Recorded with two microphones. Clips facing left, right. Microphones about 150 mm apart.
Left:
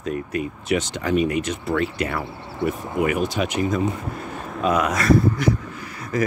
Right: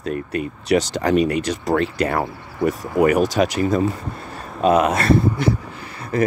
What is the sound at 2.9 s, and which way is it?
Speech, 40° right (ahead or behind).